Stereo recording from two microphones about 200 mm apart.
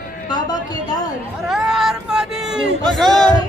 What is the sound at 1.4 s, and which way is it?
Speech, centre (ahead or behind).